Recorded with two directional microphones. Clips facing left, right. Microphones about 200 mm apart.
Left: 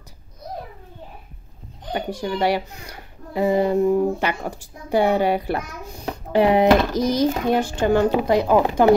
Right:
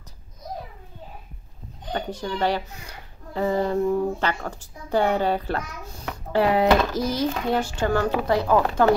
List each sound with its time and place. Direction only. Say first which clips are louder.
1.9 s a child's voice: left 3 dB; 10° left (ahead or behind)